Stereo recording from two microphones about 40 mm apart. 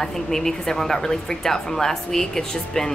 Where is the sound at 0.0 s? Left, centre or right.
Centre.